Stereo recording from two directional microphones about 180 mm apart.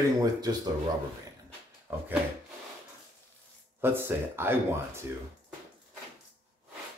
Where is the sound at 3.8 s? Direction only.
10° right (ahead or behind).